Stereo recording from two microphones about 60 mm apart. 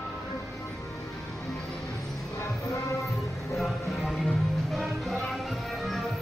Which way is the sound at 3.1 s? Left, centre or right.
Centre.